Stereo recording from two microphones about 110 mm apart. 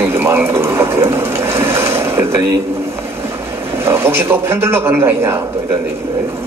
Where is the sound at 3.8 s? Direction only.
20° right (ahead or behind).